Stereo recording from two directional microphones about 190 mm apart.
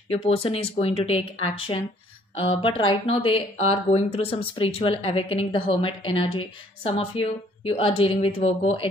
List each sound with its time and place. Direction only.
0.1 s speech: 30° left (ahead or behind)